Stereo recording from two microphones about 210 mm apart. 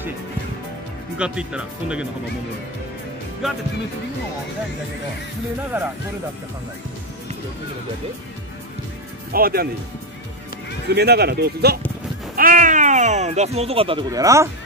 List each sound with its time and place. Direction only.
1.1 s speech: 5° right (ahead or behind)
3.4 s speech: centre (ahead or behind)
5.7 s speech: 10° right (ahead or behind)
9.3 s speech: 45° right (ahead or behind)
10.9 s speech: 50° right (ahead or behind); by 14.5 s 15° right (ahead or behind)